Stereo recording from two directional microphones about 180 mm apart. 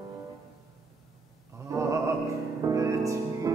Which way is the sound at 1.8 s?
15° right (ahead or behind).